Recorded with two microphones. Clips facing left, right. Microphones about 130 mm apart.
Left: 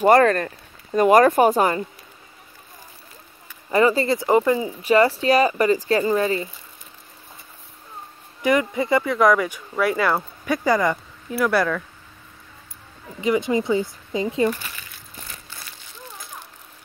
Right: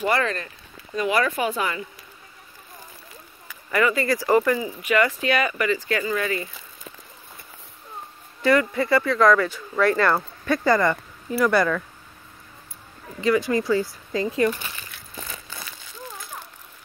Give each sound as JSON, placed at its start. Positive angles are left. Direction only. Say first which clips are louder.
{"t": 0.0, "sound": "speech", "louder": "left 9 dB", "side_deg": 45}
{"t": 3.7, "sound": "speech", "louder": "left 4 dB", "side_deg": 30}
{"t": 8.4, "sound": "speech", "louder": "even", "side_deg": 20}
{"t": 13.2, "sound": "speech", "louder": "even", "side_deg": 20}